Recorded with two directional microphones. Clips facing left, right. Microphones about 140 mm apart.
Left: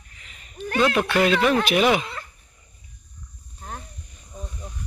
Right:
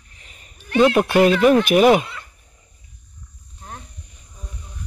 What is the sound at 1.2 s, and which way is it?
Speech, 45° right (ahead or behind).